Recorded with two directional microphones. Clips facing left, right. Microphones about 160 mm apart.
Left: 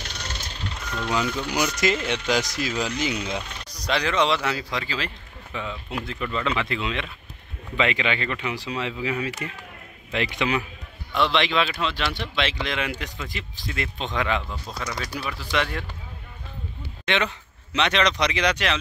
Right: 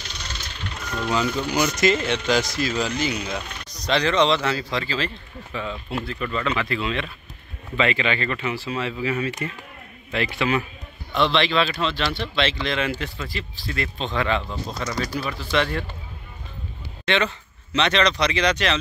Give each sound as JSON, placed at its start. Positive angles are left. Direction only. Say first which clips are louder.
{"t": 0.0, "sound": "music", "louder": "left 1 dB", "side_deg": 55}
{"t": 1.8, "sound": "speech", "louder": "right 3 dB", "side_deg": 10}
{"t": 3.8, "sound": "speech", "louder": "right 3 dB", "side_deg": 10}
{"t": 11.1, "sound": "speech", "louder": "right 2 dB", "side_deg": 5}
{"t": 14.8, "sound": "speech", "louder": "right 4 dB", "side_deg": 0}
{"t": 17.0, "sound": "speech", "louder": "right 2 dB", "side_deg": 15}